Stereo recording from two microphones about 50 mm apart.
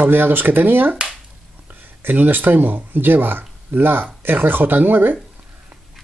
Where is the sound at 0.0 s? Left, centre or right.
Right.